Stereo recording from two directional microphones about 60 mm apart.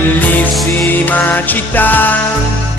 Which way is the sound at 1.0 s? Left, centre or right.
Left.